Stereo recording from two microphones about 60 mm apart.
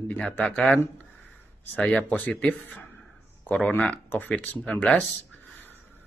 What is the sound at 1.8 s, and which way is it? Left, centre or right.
Speech, centre.